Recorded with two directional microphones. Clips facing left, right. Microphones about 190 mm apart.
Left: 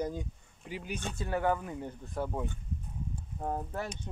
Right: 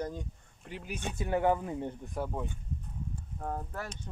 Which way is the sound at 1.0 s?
15° right (ahead or behind).